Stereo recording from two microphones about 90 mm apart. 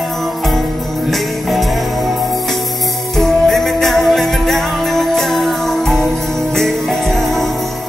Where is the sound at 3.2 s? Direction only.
5° left (ahead or behind).